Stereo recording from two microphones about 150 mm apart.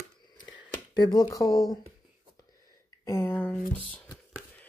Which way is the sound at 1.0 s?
25° left (ahead or behind).